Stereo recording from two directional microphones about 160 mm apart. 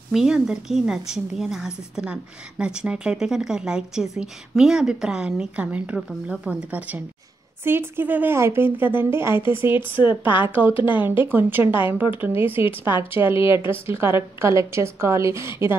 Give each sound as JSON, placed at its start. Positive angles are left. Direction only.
{"t": 0.1, "sound": "a woman's voice", "side_deg": -5}
{"t": 9.7, "sound": "speech", "side_deg": 30}
{"t": 10.4, "sound": "a woman's voice", "side_deg": -10}